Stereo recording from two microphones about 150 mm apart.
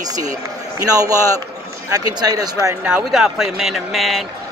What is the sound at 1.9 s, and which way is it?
Speech, 25° right (ahead or behind).